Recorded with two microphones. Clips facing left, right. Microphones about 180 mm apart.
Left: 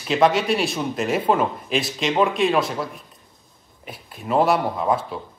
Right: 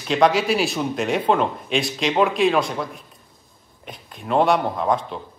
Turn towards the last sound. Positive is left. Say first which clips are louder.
# even
turn(degrees=5)  # may be behind; listen again after turning